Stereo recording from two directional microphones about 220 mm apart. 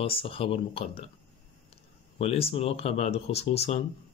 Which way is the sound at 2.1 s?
25° left (ahead or behind).